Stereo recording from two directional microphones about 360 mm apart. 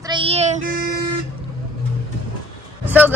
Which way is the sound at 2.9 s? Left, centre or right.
Centre.